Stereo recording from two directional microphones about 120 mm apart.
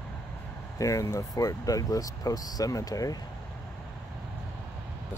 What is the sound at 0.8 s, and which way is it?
Speech, 25° left (ahead or behind).